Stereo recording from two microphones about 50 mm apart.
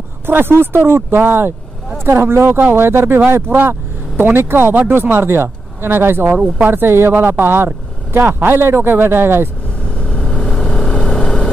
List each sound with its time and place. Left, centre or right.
0.3 s speech: right
2.0 s speech: right
3.5 s speech: right
9.9 s vehicle: left